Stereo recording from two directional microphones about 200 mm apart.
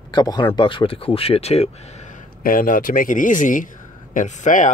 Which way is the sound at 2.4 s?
45° left (ahead or behind).